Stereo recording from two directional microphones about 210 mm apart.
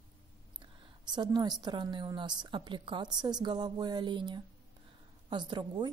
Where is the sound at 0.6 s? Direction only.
20° right (ahead or behind).